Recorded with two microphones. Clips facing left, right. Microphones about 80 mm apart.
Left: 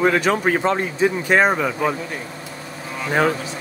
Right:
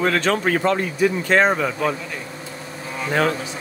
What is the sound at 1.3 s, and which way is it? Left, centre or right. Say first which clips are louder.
Speech: left 1 dB; centre.